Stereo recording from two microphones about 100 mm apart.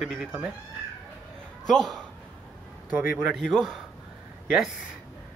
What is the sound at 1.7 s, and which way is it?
Speech, 5° left (ahead or behind).